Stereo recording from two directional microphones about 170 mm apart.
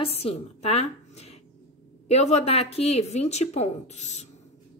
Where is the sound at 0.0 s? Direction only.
35° left (ahead or behind).